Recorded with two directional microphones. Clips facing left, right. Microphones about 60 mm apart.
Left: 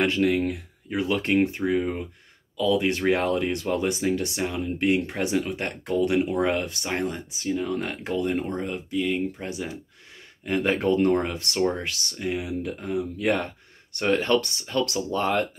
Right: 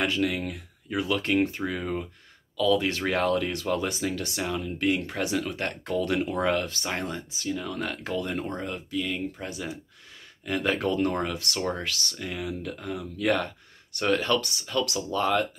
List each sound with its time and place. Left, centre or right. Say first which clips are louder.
0.0 s speech: left 5 dB; left